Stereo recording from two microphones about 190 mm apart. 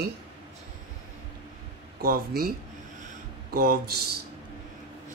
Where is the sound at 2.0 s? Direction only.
50° right (ahead or behind).